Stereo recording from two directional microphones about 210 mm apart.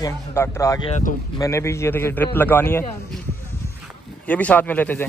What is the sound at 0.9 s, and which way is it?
Speech, 40° left (ahead or behind).